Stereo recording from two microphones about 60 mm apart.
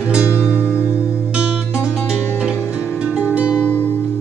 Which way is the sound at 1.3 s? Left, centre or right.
Centre.